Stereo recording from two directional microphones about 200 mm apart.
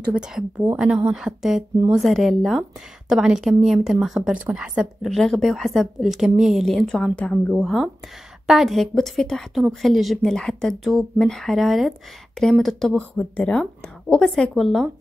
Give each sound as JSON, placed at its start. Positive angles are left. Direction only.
{"t": 0.1, "sound": "a woman's voice", "side_deg": -5}